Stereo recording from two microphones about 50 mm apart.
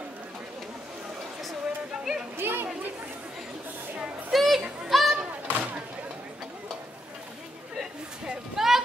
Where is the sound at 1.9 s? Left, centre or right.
Centre.